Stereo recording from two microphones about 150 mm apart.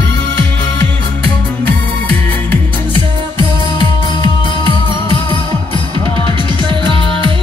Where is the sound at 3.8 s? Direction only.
30° left (ahead or behind).